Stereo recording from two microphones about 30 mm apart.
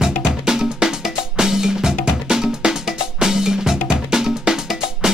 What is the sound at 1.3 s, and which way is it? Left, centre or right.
Music, centre.